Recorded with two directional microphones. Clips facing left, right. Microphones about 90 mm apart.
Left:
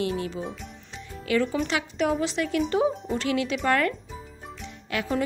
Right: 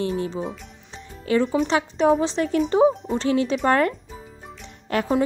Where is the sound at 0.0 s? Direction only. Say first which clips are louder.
Right 3 dB; 30° right (ahead or behind).